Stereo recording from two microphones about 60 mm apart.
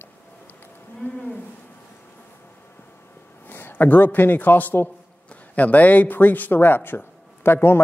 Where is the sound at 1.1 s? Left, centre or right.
Left.